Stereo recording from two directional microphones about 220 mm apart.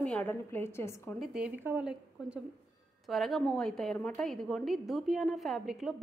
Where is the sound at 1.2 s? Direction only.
5° right (ahead or behind).